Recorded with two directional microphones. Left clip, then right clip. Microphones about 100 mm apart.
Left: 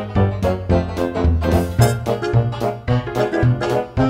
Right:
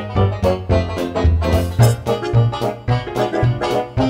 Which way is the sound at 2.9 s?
20° left (ahead or behind).